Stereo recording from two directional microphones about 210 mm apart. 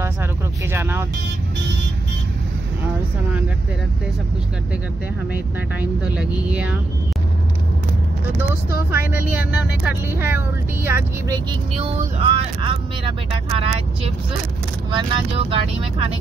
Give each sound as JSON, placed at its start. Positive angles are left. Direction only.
{"t": 0.0, "sound": "vehicle", "side_deg": -10}
{"t": 5.3, "sound": "speech", "side_deg": -5}
{"t": 8.9, "sound": "speech", "side_deg": -10}
{"t": 11.7, "sound": "speech", "side_deg": -30}